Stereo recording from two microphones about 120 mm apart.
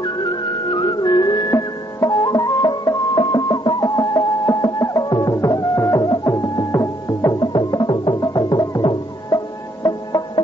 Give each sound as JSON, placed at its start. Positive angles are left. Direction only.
{"t": 0.0, "sound": "music", "side_deg": 40}